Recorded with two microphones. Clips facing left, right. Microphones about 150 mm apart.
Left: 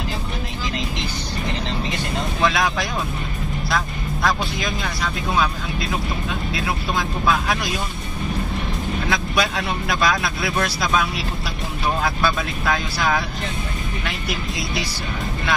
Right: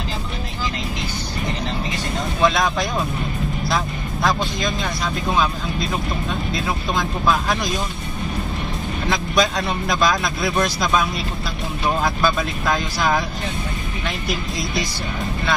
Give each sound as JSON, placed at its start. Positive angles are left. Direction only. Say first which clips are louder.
{"t": 2.4, "sound": "music", "louder": "right 3 dB", "side_deg": 0}
{"t": 3.6, "sound": "speech", "louder": "left 1 dB", "side_deg": 0}
{"t": 7.0, "sound": "speech", "louder": "right 1 dB", "side_deg": 0}
{"t": 9.1, "sound": "speech", "louder": "right 4 dB", "side_deg": 10}
{"t": 12.0, "sound": "speech", "louder": "right 2 dB", "side_deg": 0}